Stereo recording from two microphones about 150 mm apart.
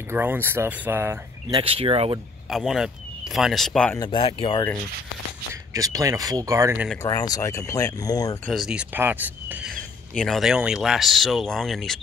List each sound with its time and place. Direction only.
0.1 s speech: 15° right (ahead or behind)
1.5 s speech: 35° right (ahead or behind)
2.5 s speech: centre (ahead or behind)
4.0 s speech: 35° left (ahead or behind)
5.5 s speech: 25° right (ahead or behind)
7.0 s speech: 25° left (ahead or behind)
8.5 s speech: centre (ahead or behind)
10.1 s speech: centre (ahead or behind)